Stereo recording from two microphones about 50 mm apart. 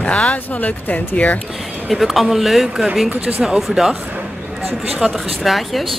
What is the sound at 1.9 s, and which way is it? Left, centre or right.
Speech, centre.